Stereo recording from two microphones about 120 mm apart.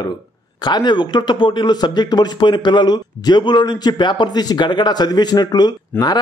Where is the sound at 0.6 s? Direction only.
40° left (ahead or behind).